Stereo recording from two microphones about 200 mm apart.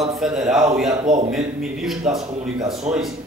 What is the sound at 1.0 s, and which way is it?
Speech, 40° right (ahead or behind).